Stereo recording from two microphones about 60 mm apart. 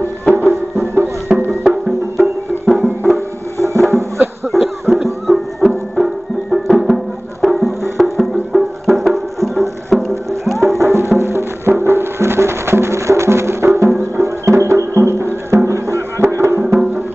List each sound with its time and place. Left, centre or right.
0.2 s music: left
1.3 s music: centre
2.6 s music: centre
3.5 s music: right
4.5 s music: centre
10.8 s music: right